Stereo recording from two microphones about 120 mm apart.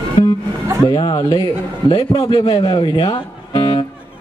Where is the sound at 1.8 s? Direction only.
55° left (ahead or behind).